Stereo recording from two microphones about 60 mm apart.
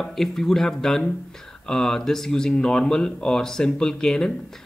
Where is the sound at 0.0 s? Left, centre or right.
Centre.